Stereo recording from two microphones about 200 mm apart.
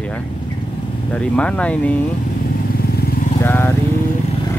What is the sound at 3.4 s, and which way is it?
Speech, 10° left (ahead or behind).